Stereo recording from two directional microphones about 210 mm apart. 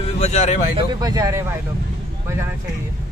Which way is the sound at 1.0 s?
15° right (ahead or behind).